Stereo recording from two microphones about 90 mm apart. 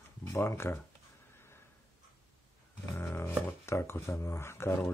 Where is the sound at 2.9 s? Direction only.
25° left (ahead or behind).